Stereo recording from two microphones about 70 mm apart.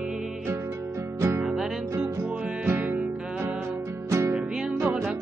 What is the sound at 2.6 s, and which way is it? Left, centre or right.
Music, right.